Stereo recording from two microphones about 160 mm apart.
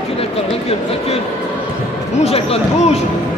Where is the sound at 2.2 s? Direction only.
40° left (ahead or behind).